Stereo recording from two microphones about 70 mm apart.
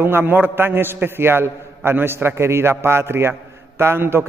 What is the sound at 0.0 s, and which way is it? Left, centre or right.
A man's voice, right.